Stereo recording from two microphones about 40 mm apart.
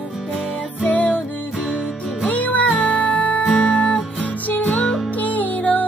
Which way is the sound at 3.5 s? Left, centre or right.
Left.